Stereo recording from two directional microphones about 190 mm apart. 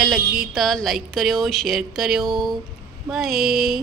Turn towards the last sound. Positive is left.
turn(degrees=0)  # may be behind; listen again after turning